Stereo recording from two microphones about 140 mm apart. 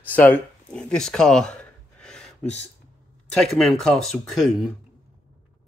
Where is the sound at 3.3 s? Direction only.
5° left (ahead or behind).